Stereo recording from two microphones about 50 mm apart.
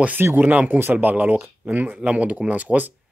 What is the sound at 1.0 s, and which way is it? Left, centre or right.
Speech, right.